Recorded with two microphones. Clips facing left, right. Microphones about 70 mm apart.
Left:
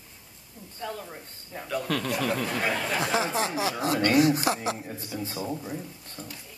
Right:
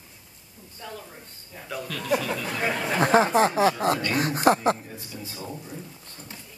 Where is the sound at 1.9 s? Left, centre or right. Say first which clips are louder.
Left 6 dB; left.